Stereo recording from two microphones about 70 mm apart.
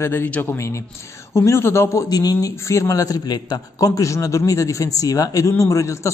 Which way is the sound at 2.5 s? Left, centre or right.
Left.